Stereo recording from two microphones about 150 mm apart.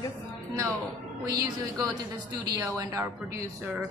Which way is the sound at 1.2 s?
25° right (ahead or behind).